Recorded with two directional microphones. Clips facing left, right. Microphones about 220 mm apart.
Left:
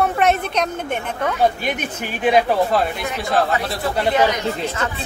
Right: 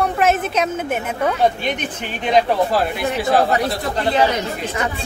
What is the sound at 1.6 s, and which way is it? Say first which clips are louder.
Speech: even; 10° left (ahead or behind).